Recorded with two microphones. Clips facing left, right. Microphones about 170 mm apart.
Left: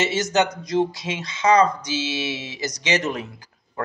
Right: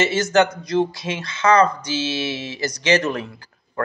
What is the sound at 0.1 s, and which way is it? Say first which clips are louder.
Speech: right 3 dB; 20° left (ahead or behind).